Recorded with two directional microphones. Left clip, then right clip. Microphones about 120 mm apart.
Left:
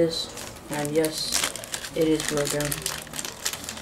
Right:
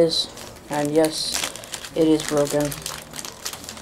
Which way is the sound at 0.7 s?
Centre (ahead or behind).